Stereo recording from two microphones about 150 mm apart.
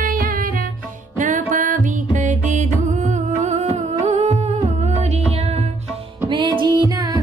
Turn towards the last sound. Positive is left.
turn(degrees=-25)  # may be behind; listen again after turning